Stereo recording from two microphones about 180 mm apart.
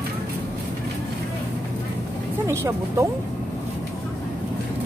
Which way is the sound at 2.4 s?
15° right (ahead or behind).